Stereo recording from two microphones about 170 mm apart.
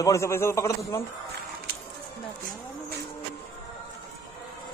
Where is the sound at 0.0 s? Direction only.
15° left (ahead or behind).